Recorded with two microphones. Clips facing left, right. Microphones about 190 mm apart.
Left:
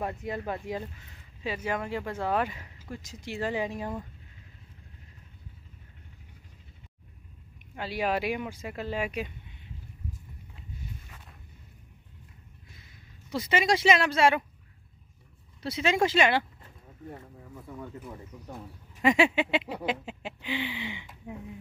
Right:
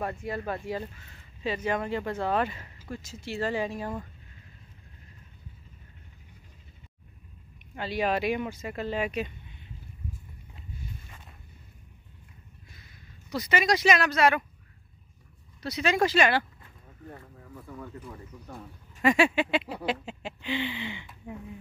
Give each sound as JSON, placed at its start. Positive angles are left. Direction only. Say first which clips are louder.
{"t": 0.0, "sound": "speech", "louder": "right 1 dB", "side_deg": 20}
{"t": 7.7, "sound": "speech", "louder": "right 1 dB", "side_deg": 10}
{"t": 13.3, "sound": "speech", "louder": "even", "side_deg": 25}
{"t": 15.6, "sound": "speech", "louder": "even", "side_deg": 25}
{"t": 19.0, "sound": "speech", "louder": "even", "side_deg": 20}